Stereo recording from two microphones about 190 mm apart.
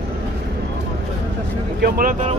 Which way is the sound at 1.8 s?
50° right (ahead or behind).